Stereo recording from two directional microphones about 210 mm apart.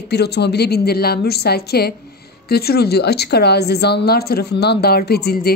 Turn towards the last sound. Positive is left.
turn(degrees=50)  # may be behind; listen again after turning